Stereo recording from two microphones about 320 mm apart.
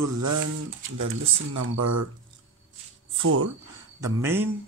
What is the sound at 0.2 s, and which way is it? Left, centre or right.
Speech, right.